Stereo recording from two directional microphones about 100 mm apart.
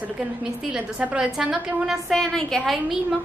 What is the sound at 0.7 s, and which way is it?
A woman's voice, 10° right (ahead or behind).